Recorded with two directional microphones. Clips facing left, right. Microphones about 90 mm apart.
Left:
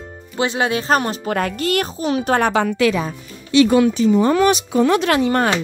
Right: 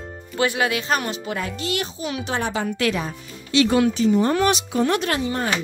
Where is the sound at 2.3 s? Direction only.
65° left (ahead or behind); by 2.8 s 80° left.